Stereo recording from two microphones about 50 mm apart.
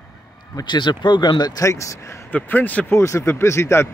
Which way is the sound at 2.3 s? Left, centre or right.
Left.